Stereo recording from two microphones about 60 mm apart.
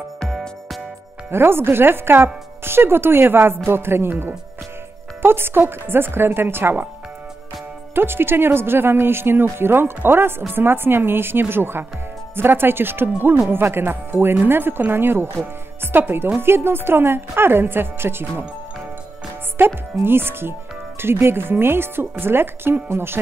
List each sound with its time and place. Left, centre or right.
0.2 s music: centre
1.3 s speech: right
7.9 s speech: right
19.6 s speech: right